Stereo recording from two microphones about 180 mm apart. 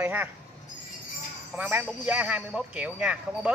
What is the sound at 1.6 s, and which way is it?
Speech, 10° right (ahead or behind).